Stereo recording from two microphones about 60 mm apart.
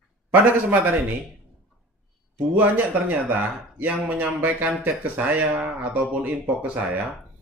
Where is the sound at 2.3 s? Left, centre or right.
Right.